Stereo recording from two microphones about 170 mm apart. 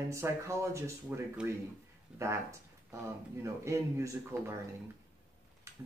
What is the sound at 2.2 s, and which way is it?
Speech, 15° right (ahead or behind).